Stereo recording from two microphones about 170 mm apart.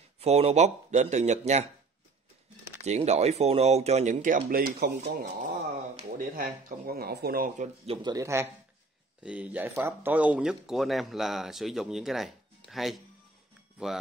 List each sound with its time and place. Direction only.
0.2 s speech: 40° right (ahead or behind)
2.8 s speech: 40° right (ahead or behind)
4.5 s speech: 65° right (ahead or behind)
6.1 s speech: 55° right (ahead or behind); by 8.1 s 35° right (ahead or behind)
8.1 s speech: 15° right (ahead or behind); by 13.0 s centre (ahead or behind)